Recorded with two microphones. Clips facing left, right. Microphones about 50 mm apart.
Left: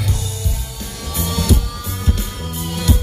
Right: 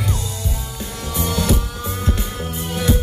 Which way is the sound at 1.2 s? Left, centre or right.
Right.